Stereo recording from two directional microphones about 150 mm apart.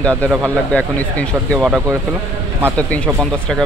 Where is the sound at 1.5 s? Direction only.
10° right (ahead or behind).